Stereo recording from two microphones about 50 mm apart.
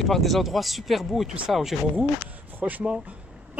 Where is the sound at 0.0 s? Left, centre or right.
Centre.